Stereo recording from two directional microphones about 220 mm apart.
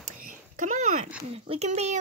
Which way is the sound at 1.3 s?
30° right (ahead or behind).